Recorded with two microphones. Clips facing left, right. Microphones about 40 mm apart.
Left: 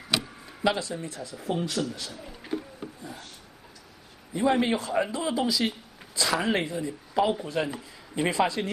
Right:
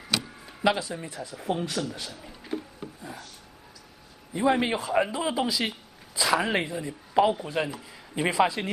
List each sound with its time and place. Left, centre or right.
0.6 s a man's voice: centre
1.2 s speech: right
4.3 s a man's voice: centre